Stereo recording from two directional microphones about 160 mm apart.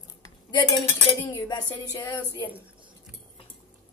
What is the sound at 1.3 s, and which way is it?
Speech, 20° left (ahead or behind).